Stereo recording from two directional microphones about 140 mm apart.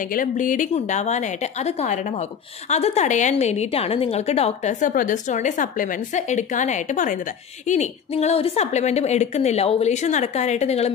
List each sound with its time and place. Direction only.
0.0 s a woman's voice: 70° left (ahead or behind)
2.7 s a woman's voice: 50° left (ahead or behind)